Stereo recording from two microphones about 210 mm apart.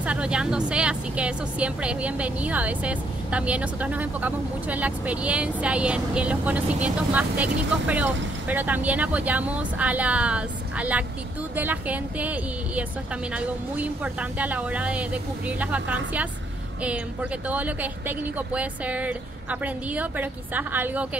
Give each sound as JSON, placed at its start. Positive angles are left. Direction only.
{"t": 0.0, "sound": "speech", "side_deg": -5}